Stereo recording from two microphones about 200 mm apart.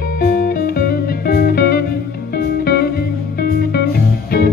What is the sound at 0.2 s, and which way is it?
Music, 45° left (ahead or behind).